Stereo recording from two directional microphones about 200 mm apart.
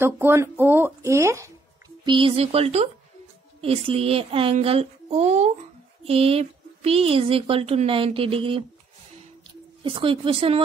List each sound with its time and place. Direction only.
0.0 s speech: 10° right (ahead or behind)
2.0 s speech: 25° right (ahead or behind)
9.8 s speech: 25° right (ahead or behind)